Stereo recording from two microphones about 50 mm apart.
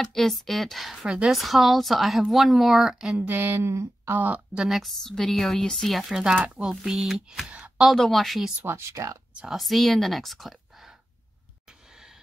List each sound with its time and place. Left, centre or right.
0.1 s speech: centre
1.0 s speech: centre
1.3 s speech: centre
3.2 s speech: right
3.6 s speech: right
4.6 s speech: centre
5.0 s a woman's voice: centre
6.3 s speech: right
6.7 s speech: centre
7.4 s a woman's voice: right
7.9 s speech: centre
8.6 s speech: right
9.5 s speech: centre